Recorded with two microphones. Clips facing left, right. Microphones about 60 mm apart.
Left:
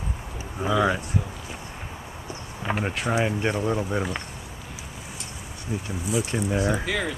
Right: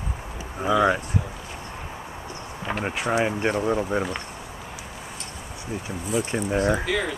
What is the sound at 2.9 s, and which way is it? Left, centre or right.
Speech, centre.